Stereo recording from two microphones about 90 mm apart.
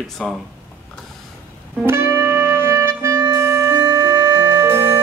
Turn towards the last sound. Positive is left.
turn(degrees=-25)  # may be behind; listen again after turning